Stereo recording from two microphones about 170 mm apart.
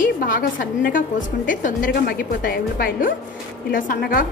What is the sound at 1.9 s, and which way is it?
A woman's voice, 65° left (ahead or behind).